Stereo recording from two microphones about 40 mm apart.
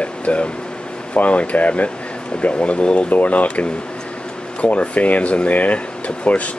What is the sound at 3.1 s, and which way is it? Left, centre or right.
Speech, left.